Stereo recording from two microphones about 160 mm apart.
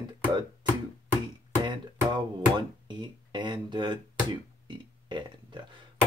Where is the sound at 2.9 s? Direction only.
30° right (ahead or behind).